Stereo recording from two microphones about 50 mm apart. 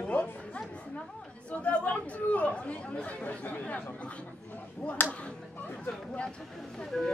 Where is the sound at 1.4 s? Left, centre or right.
Left.